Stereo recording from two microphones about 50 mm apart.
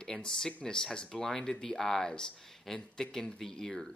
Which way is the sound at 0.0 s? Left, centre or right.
Centre.